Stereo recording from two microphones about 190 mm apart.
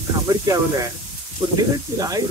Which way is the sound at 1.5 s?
20° right (ahead or behind).